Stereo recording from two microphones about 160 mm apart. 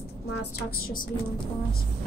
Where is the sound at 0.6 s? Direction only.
70° left (ahead or behind).